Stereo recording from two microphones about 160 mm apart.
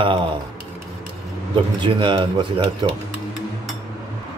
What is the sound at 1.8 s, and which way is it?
Speech, 30° right (ahead or behind).